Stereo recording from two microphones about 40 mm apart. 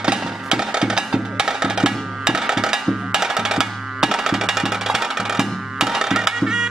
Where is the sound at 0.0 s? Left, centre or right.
Centre.